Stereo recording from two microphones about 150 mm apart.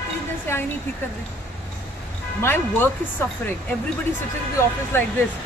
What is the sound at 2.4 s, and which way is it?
Speech, 15° left (ahead or behind).